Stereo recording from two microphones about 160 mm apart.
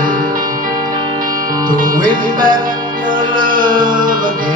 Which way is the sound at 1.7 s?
60° right (ahead or behind).